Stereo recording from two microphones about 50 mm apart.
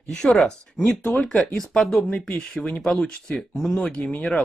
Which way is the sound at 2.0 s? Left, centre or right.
Left.